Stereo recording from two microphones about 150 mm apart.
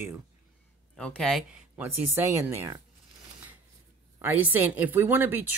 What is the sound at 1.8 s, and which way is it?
Speech, 15° right (ahead or behind).